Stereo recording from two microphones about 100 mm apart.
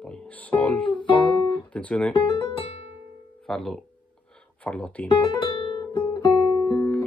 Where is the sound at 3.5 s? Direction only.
5° left (ahead or behind).